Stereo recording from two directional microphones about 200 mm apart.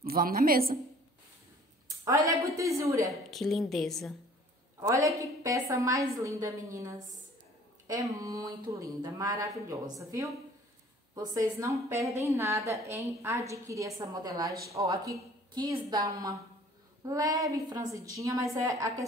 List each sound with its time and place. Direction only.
0.0 s a woman's voice: 45° right (ahead or behind)
2.0 s a woman's voice: 15° right (ahead or behind)
3.1 s a woman's voice: centre (ahead or behind)
4.7 s a woman's voice: 15° right (ahead or behind)
8.2 s a woman's voice: 20° right (ahead or behind)